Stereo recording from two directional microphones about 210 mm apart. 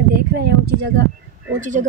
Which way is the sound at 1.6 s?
35° right (ahead or behind).